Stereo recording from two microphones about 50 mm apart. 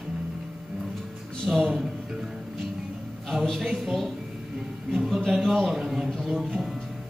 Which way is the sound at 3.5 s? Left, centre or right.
Centre.